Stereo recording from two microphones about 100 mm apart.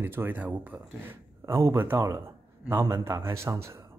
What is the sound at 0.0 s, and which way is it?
Speech, 20° right (ahead or behind).